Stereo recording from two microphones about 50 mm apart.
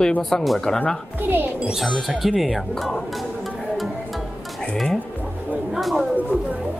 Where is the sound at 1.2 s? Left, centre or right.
Right.